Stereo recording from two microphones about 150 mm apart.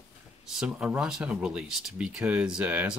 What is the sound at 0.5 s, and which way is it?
Speech, 5° right (ahead or behind).